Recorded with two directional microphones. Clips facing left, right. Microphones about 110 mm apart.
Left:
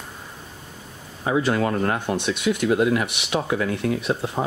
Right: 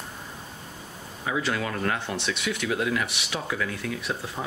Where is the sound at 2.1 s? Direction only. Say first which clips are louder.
Left 7 dB; 50° left (ahead or behind).